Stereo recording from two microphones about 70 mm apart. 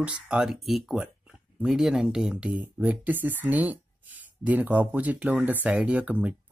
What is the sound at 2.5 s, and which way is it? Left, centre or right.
Speech, right.